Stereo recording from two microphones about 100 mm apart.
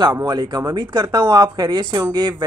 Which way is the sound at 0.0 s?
40° right (ahead or behind).